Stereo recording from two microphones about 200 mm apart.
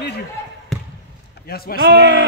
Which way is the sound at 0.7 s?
Centre (ahead or behind).